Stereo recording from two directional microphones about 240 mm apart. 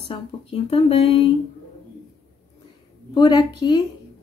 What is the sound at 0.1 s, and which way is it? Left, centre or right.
Speech, left.